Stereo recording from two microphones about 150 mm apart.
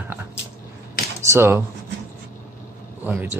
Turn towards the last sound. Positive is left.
turn(degrees=-15)  # may be behind; listen again after turning